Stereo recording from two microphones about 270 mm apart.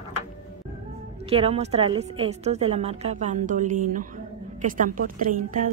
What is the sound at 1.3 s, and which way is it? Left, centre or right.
A woman's voice, right.